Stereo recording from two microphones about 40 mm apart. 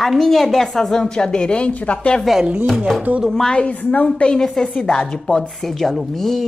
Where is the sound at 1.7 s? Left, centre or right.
Left.